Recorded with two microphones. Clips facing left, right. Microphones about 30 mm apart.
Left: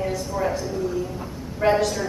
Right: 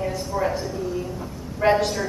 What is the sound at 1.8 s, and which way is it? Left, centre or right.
Speech, centre.